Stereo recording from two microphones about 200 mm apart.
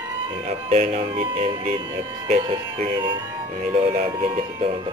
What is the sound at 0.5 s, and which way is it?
Speech, 35° right (ahead or behind).